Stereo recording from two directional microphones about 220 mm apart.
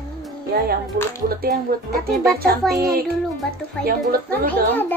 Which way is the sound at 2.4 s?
45° right (ahead or behind).